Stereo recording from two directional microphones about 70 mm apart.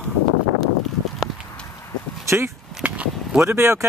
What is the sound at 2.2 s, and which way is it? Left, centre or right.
Speech, right.